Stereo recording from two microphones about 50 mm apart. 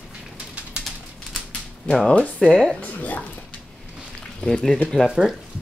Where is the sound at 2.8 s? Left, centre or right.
Left.